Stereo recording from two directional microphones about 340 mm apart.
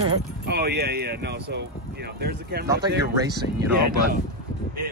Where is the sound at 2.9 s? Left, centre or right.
Centre.